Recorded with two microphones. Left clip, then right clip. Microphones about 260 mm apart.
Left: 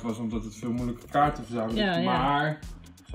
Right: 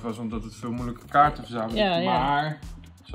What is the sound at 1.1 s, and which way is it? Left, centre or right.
Speech, right.